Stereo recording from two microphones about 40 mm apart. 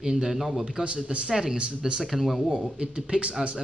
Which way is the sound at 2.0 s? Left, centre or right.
Centre.